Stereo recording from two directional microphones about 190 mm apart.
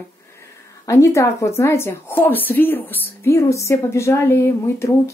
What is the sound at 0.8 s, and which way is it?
Speech, 15° left (ahead or behind).